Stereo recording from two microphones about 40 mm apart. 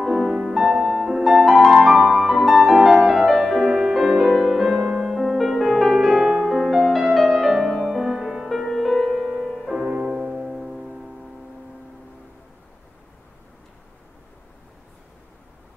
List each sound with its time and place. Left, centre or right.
0.1 s music: centre
6.5 s music: centre
6.8 s music: centre
9.9 s music: right
10.4 s music: centre